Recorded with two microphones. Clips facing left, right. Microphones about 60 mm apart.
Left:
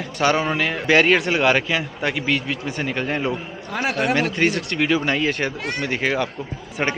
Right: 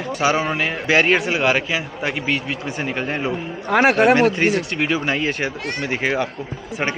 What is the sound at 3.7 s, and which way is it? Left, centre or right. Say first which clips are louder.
Speech: right 9 dB; right.